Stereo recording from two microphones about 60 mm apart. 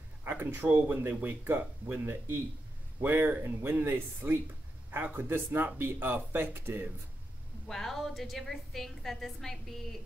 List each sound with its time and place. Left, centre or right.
0.2 s speech: right
7.6 s a woman's voice: centre